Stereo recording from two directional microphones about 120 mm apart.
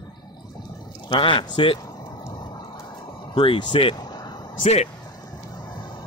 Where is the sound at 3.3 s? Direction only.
40° left (ahead or behind).